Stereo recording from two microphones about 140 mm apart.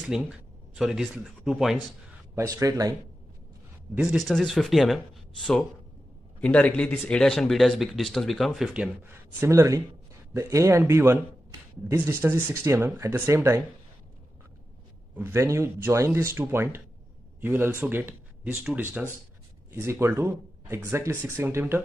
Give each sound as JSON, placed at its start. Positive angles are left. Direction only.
{"t": 0.0, "sound": "speech", "side_deg": -5}
{"t": 2.3, "sound": "speech", "side_deg": -25}
{"t": 3.9, "sound": "a man's voice", "side_deg": -5}
{"t": 9.0, "sound": "speech", "side_deg": -15}
{"t": 15.1, "sound": "speech", "side_deg": -20}
{"t": 19.7, "sound": "speech", "side_deg": -20}